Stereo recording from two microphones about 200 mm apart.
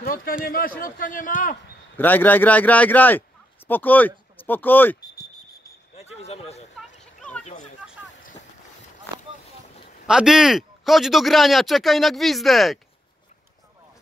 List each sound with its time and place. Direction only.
0.0 s a man's voice: 45° left (ahead or behind)
2.0 s a man's voice: 10° left (ahead or behind)
5.9 s a sound: 30° left (ahead or behind)
7.0 s children playing: 5° left (ahead or behind)
7.8 s a sound: centre (ahead or behind)
10.0 s speech: 5° right (ahead or behind)